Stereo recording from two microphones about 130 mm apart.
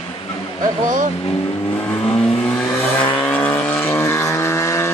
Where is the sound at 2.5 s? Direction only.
10° left (ahead or behind).